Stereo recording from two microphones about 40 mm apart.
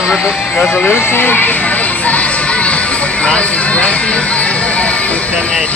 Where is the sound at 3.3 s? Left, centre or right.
Left.